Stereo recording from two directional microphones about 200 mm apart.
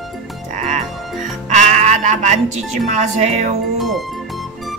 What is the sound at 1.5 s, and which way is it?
Speech, 35° right (ahead or behind).